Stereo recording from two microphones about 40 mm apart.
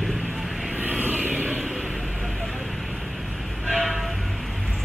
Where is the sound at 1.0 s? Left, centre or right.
Right.